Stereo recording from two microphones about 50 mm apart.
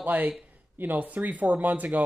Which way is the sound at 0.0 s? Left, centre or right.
Right.